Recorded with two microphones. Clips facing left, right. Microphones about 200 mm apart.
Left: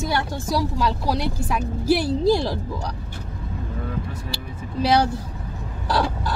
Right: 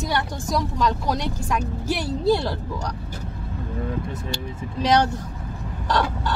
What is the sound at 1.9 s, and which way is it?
Speech, 35° left (ahead or behind).